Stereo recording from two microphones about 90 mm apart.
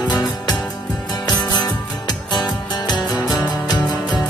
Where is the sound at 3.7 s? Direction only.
15° left (ahead or behind).